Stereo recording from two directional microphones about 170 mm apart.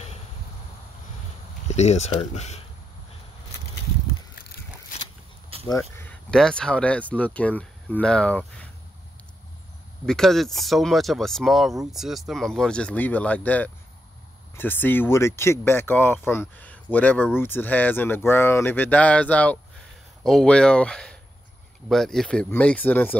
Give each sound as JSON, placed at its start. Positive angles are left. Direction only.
{"t": 1.7, "sound": "speech", "side_deg": 40}
{"t": 5.7, "sound": "a sound", "side_deg": 15}
{"t": 6.3, "sound": "speech", "side_deg": 5}
{"t": 10.0, "sound": "speech", "side_deg": 5}